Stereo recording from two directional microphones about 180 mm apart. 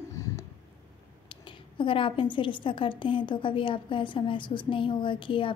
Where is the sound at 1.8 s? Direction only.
30° left (ahead or behind).